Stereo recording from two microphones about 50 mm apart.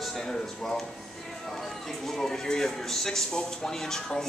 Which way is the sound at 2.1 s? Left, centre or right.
Centre.